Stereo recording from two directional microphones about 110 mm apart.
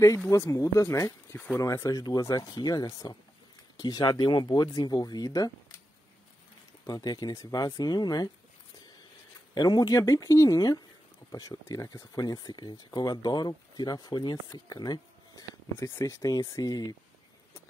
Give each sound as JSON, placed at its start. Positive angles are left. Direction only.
{"t": 0.3, "sound": "speech", "side_deg": 30}
{"t": 6.9, "sound": "speech", "side_deg": 35}
{"t": 9.5, "sound": "speech", "side_deg": 35}